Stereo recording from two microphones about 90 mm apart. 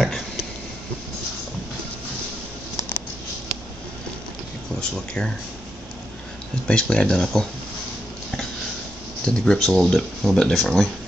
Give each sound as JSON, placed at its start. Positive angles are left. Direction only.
{"t": 4.7, "sound": "speech", "side_deg": 5}
{"t": 6.7, "sound": "speech", "side_deg": 10}
{"t": 9.2, "sound": "speech", "side_deg": 5}